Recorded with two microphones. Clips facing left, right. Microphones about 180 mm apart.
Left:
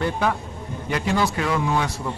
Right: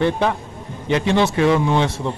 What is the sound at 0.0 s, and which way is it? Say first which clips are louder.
A man's voice: right 4 dB; 20° right (ahead or behind).